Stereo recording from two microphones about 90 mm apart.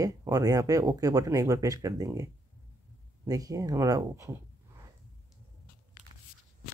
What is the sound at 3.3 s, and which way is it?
Speech, 40° right (ahead or behind).